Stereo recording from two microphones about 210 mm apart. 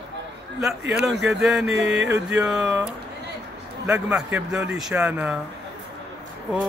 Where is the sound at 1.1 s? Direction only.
55° right (ahead or behind).